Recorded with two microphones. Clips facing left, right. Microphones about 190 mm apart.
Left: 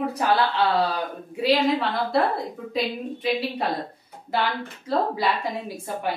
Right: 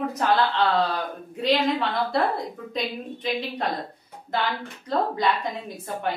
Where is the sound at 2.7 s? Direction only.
5° left (ahead or behind).